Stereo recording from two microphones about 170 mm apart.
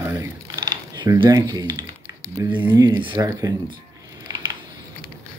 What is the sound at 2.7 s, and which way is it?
Speech, 25° right (ahead or behind).